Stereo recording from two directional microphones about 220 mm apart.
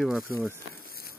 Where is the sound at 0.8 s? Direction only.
45° left (ahead or behind).